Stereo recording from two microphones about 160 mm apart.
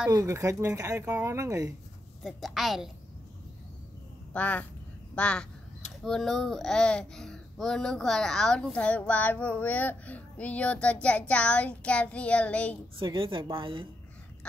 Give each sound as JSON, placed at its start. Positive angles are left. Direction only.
{"t": 0.1, "sound": "speech", "side_deg": -20}
{"t": 2.2, "sound": "a woman's voice", "side_deg": 0}
{"t": 4.3, "sound": "a child's voice", "side_deg": 10}
{"t": 13.0, "sound": "speech", "side_deg": -30}